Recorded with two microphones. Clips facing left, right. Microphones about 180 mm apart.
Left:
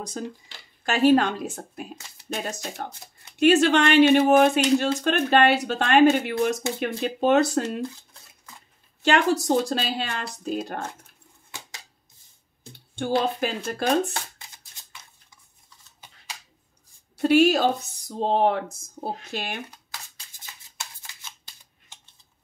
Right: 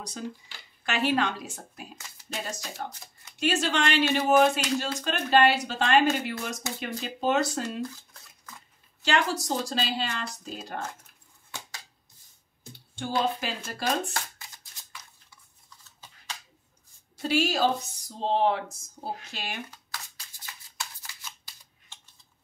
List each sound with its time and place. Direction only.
0.8 s speech: 45° left (ahead or behind)
9.0 s speech: 55° left (ahead or behind)
12.9 s speech: 55° left (ahead or behind)
17.2 s speech: 55° left (ahead or behind)
19.0 s speech: 20° left (ahead or behind)
19.3 s speech: 55° left (ahead or behind)